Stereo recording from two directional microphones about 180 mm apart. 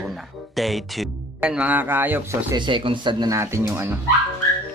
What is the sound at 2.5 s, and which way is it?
Speech, 25° right (ahead or behind).